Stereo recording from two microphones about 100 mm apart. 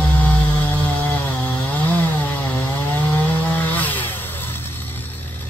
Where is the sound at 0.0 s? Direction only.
15° left (ahead or behind).